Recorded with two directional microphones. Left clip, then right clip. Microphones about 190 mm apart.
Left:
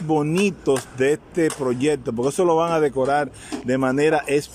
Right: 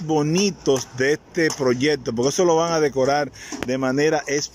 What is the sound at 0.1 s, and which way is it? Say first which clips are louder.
A man's voice: even; 5° left (ahead or behind).